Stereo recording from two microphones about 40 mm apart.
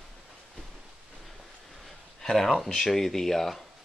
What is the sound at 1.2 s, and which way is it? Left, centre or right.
Train, centre.